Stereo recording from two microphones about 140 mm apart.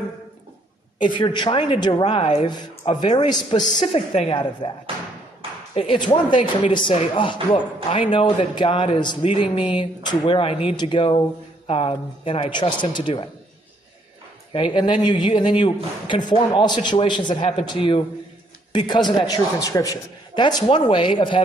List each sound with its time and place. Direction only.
1.1 s speech: 35° left (ahead or behind)
3.5 s a woman's voice: 60° left (ahead or behind)
3.9 s a woman's voice: 45° left (ahead or behind)
14.5 s speech: 35° left (ahead or behind)